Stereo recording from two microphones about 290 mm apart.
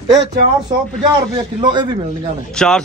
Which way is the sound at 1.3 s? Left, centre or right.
Centre.